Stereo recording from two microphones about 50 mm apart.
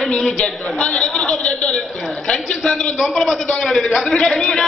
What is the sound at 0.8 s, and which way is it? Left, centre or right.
A man's voice, left.